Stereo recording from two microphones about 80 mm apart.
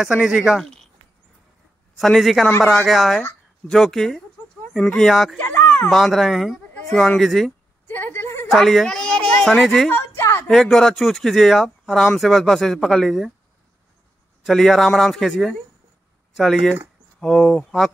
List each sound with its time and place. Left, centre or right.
0.0 s speech: centre
2.0 s speech: centre
5.4 s a sound: left
5.9 s speech: centre
7.8 s a sound: left
8.5 s speech: centre
10.0 s a sound: left
10.5 s speech: centre
14.4 s speech: centre